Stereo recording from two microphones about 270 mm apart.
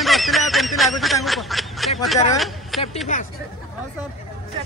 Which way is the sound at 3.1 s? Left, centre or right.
Left.